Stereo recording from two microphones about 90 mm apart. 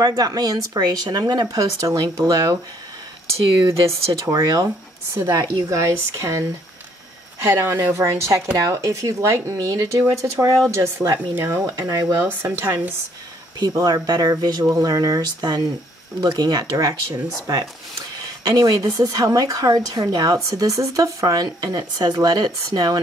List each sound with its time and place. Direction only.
0.0 s speech: 45° right (ahead or behind)
3.9 s speech: 40° right (ahead or behind)
7.4 s speech: 30° right (ahead or behind)
12.3 s speech: 20° right (ahead or behind)
13.7 s speech: 45° right (ahead or behind)
18.6 s speech: 40° right (ahead or behind)